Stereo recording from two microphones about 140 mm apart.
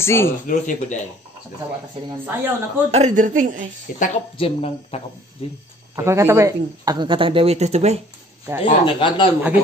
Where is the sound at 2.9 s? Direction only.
55° right (ahead or behind).